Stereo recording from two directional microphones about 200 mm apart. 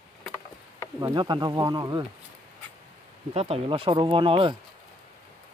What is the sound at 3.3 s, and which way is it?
Speech, 30° right (ahead or behind).